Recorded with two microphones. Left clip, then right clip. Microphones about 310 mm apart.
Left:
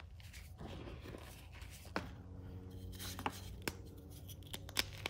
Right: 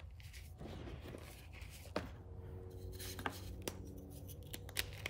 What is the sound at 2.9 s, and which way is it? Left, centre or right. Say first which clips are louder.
Chopping: left 2 dB; centre.